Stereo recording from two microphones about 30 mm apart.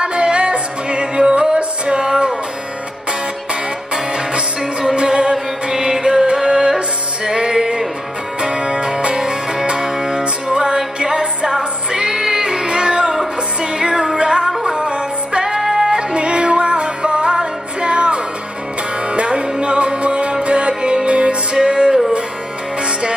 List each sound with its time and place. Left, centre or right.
0.0 s music: right
3.9 s music: right; by 15.9 s centre
15.9 s music: right